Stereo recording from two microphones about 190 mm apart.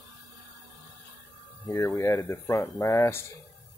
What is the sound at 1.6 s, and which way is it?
Speech, 15° left (ahead or behind).